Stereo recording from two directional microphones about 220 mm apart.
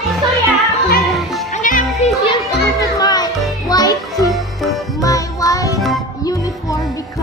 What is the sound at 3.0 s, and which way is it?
Music, 15° left (ahead or behind).